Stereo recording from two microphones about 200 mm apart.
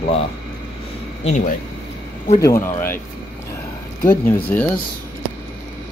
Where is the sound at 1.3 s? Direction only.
40° left (ahead or behind).